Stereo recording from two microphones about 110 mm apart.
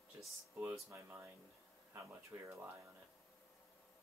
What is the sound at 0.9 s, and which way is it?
Speech, 20° right (ahead or behind).